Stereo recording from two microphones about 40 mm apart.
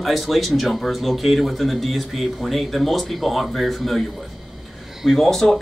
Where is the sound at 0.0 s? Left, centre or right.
Centre.